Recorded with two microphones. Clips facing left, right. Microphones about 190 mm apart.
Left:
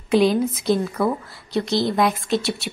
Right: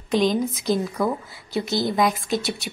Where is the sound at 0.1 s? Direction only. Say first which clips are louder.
Left 3 dB; 5° left (ahead or behind).